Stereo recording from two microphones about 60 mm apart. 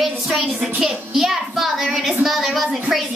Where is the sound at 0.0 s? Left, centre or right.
Centre.